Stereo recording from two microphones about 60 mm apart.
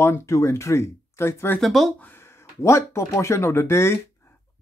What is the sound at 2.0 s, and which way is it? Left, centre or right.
Speech, left.